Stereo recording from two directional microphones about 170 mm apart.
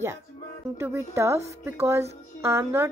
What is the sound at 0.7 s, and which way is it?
A woman's voice, 15° right (ahead or behind).